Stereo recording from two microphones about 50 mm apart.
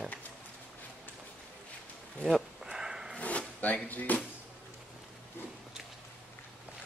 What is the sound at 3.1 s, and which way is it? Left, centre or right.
Drawer open or close, left.